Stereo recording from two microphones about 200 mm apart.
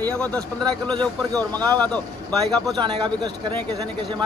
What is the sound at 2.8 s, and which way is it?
Speech, 25° right (ahead or behind).